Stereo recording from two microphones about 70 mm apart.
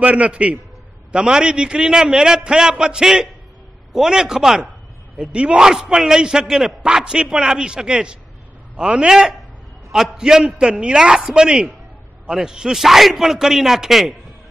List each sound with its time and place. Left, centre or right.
0.0 s a man's voice: centre
5.2 s a man's voice: centre